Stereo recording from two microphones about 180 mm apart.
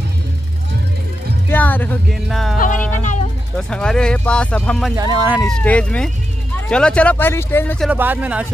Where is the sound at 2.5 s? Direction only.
45° left (ahead or behind).